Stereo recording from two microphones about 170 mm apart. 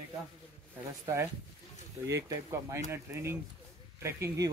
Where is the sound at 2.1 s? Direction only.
15° right (ahead or behind).